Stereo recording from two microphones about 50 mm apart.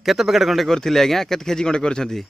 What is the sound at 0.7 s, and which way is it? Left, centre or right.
Speech, centre.